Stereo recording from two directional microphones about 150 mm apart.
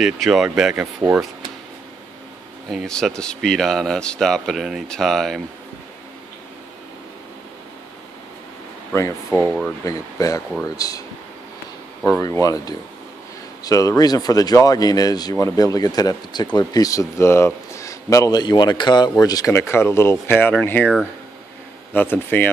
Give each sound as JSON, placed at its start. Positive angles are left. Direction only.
{"t": 0.0, "sound": "a man's voice", "side_deg": 0}
{"t": 2.7, "sound": "a man's voice", "side_deg": 0}
{"t": 9.3, "sound": "a man's voice", "side_deg": 20}
{"t": 21.9, "sound": "speech", "side_deg": 15}